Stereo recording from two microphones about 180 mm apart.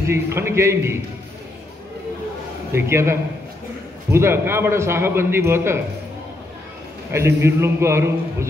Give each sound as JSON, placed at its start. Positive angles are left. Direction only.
{"t": 0.0, "sound": "a man's voice", "side_deg": -15}
{"t": 2.7, "sound": "a man's voice", "side_deg": -15}
{"t": 7.1, "sound": "a man's voice", "side_deg": -15}